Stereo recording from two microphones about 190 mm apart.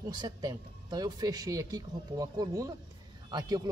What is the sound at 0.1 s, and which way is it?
Speech, 20° right (ahead or behind).